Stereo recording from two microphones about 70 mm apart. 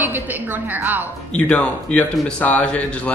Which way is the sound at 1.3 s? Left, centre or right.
Centre.